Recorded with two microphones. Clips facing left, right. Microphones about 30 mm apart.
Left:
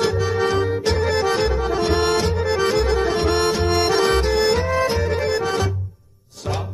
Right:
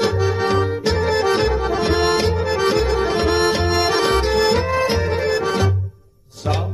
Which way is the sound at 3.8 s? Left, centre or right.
Right.